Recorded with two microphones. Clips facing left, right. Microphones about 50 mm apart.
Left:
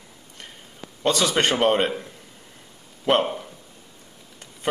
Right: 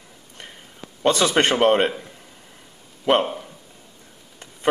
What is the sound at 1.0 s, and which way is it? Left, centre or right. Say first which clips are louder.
Speech: right 3 dB; centre.